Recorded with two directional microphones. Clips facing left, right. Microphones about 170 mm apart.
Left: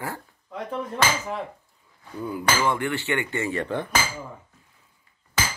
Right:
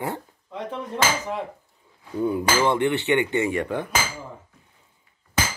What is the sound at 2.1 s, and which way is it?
Speech, 25° right (ahead or behind).